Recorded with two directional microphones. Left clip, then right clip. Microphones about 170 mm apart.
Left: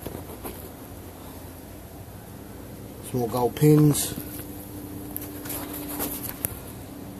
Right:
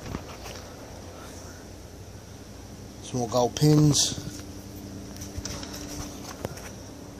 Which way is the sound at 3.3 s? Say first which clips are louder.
Left 2 dB; 15° right (ahead or behind).